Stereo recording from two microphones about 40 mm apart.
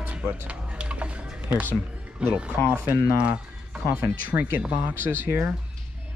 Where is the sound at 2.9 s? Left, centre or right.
Right.